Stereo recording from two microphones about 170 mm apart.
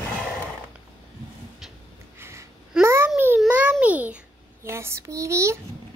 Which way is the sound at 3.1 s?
10° right (ahead or behind).